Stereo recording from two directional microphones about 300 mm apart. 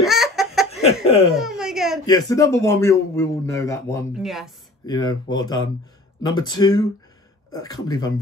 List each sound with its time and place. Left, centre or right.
0.0 s chicken: centre
1.0 s laughter: centre
1.3 s a sound: centre
2.0 s a man's voice: centre
4.1 s speech: centre
4.8 s a man's voice: centre